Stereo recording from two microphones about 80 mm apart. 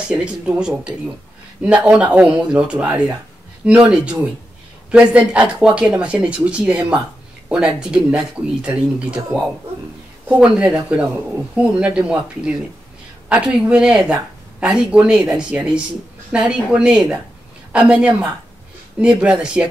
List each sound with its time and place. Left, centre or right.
0.1 s speech: centre